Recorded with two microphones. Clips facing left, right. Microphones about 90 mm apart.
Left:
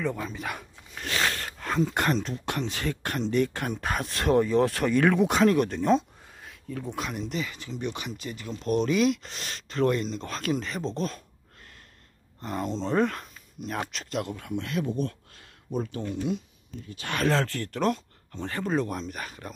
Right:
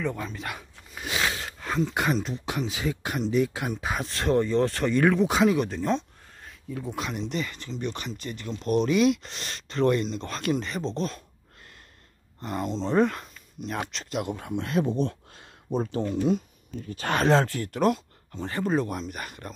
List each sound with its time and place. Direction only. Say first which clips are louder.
0.0 s speech: even; centre (ahead or behind)
12.4 s speech: right 1 dB; centre (ahead or behind)
14.3 s speech: right 3 dB; 30° right (ahead or behind)
17.3 s speech: right 4 dB; 15° right (ahead or behind)